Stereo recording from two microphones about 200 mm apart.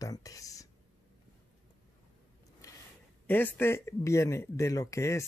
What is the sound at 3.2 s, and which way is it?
Speech, 10° left (ahead or behind).